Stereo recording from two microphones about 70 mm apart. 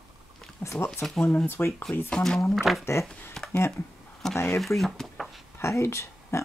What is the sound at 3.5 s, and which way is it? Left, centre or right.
Speech, left.